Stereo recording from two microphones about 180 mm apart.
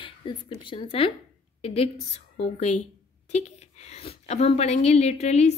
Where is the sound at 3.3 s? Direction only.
40° left (ahead or behind).